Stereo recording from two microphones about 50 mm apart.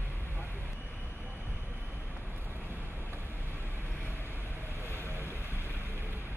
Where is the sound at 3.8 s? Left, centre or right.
Left.